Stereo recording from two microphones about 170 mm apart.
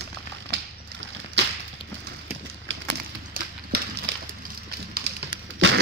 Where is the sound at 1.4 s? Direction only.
90° right.